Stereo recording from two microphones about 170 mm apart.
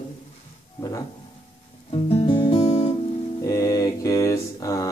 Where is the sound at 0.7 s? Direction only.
20° left (ahead or behind).